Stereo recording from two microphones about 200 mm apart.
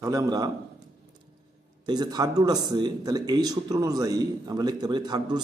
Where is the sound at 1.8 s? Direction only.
20° right (ahead or behind).